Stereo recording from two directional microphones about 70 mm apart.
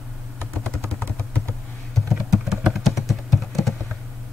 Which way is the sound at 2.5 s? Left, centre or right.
Centre.